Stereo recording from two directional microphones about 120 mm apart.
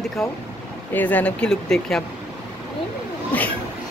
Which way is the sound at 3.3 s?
15° left (ahead or behind).